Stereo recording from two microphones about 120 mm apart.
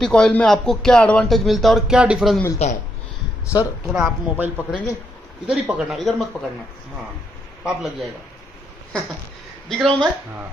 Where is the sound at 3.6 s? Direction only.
5° right (ahead or behind).